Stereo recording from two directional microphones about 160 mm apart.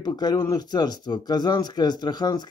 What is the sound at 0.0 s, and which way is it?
Speech, 25° left (ahead or behind).